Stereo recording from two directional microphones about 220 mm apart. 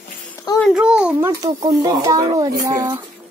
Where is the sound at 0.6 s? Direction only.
5° right (ahead or behind).